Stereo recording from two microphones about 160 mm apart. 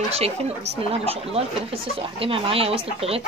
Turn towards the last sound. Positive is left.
turn(degrees=-40)  # may be behind; listen again after turning